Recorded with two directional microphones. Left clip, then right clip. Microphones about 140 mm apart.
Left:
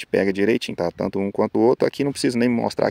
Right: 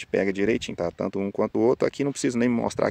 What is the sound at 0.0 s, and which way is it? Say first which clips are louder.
Speech: left 4 dB; 35° left (ahead or behind).